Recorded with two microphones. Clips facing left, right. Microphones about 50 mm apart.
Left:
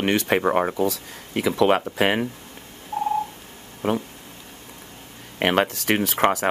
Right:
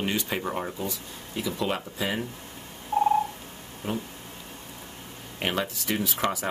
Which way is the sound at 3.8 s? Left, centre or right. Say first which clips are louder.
Left 8 dB; left.